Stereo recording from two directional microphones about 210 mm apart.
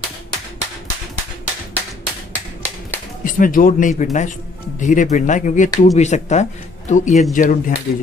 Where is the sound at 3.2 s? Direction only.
40° left (ahead or behind).